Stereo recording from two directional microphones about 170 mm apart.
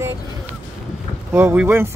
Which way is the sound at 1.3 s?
15° right (ahead or behind).